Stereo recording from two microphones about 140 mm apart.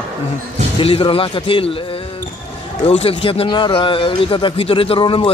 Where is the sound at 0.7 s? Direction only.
35° left (ahead or behind).